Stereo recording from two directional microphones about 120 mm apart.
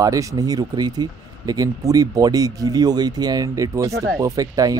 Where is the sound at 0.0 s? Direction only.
30° right (ahead or behind).